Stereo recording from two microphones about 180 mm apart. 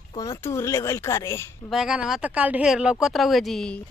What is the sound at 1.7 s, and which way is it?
Speech, 5° right (ahead or behind).